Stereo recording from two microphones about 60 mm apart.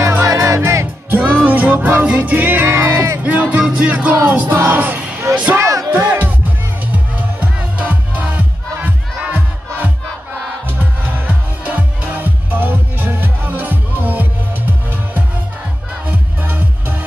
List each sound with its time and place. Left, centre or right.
0.2 s music: right
1.1 s music: right
2.7 s speech: right
3.2 s music: right
3.9 s music: right
5.6 s music: right
5.9 s music: right
10.7 s music: right
16.1 s music: right